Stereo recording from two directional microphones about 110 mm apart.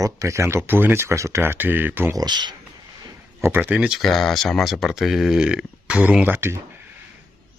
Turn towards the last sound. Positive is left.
turn(degrees=-20)  # may be behind; listen again after turning